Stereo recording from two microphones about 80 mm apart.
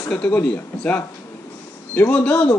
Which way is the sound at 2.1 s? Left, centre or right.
Centre.